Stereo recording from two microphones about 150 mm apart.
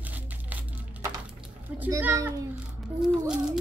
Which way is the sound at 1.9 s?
15° right (ahead or behind).